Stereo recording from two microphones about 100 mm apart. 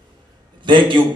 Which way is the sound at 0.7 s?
55° right (ahead or behind).